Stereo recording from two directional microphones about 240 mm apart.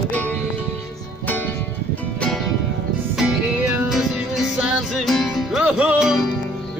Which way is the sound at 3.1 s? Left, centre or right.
Centre.